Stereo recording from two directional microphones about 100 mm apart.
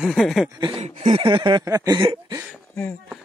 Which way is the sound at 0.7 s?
90° right.